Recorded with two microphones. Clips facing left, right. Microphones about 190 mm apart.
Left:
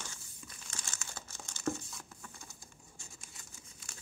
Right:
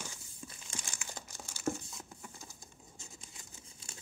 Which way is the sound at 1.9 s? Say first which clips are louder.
Right 2 dB; 20° right (ahead or behind).